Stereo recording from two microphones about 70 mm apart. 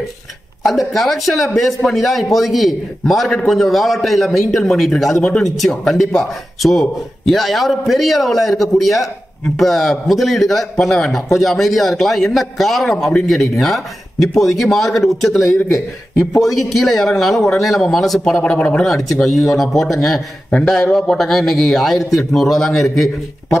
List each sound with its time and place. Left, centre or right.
0.7 s a man's voice: centre
18.4 s speech: centre
18.9 s a man's voice: centre